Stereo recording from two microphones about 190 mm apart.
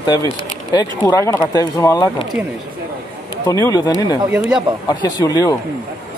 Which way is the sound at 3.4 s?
20° left (ahead or behind).